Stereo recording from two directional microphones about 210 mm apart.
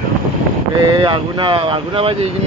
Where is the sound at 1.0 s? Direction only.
20° right (ahead or behind).